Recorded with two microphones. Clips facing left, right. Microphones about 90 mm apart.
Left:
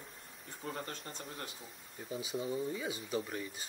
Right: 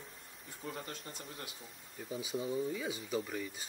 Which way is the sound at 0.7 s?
35° left (ahead or behind).